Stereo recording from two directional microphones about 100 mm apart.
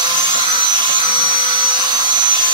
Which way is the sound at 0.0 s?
50° right (ahead or behind).